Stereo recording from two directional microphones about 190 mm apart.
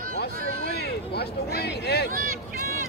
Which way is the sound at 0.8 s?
55° left (ahead or behind).